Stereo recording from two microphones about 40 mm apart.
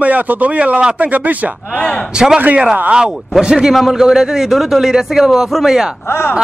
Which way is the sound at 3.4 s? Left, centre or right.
Centre.